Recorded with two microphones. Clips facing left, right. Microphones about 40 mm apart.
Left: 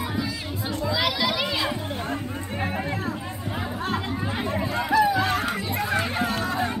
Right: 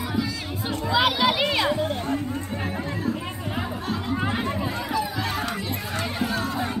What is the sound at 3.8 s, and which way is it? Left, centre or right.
Chatter, left.